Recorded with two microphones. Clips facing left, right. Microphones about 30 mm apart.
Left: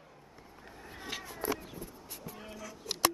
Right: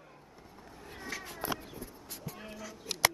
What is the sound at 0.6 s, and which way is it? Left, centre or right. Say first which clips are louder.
Vehicle: left 1 dB; left.